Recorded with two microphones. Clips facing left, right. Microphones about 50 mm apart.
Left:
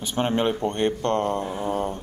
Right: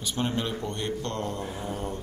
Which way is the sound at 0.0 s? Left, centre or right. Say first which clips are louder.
Left 6 dB; left.